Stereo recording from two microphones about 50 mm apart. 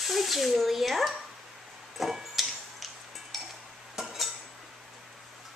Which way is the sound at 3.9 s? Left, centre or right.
Centre.